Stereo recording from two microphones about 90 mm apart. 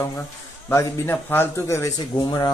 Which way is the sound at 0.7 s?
25° left (ahead or behind).